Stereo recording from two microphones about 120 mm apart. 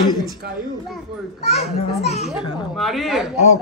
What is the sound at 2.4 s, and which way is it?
Speech, 45° left (ahead or behind).